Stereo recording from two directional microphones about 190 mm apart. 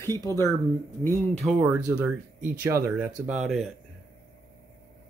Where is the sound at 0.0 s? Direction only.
15° left (ahead or behind).